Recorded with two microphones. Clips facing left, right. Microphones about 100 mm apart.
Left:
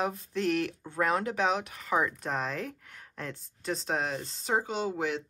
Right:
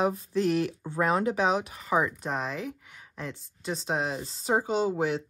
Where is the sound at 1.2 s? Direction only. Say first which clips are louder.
Right 3 dB; 5° right (ahead or behind).